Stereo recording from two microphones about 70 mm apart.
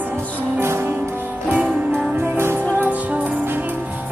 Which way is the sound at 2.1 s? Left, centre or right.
Right.